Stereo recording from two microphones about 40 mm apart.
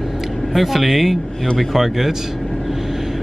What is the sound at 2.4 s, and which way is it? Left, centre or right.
Vehicle, centre.